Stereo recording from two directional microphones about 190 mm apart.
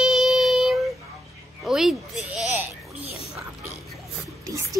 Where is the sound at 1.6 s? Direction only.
Centre (ahead or behind).